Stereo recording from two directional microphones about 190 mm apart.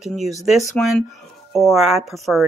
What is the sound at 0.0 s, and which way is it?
Speech, centre (ahead or behind).